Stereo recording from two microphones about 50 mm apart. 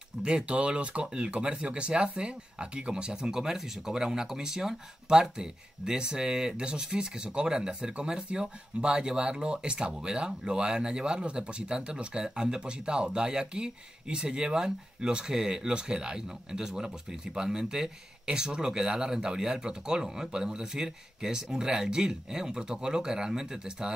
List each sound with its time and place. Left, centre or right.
0.2 s speech: centre